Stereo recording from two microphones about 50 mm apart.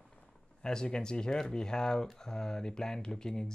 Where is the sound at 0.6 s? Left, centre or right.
Centre.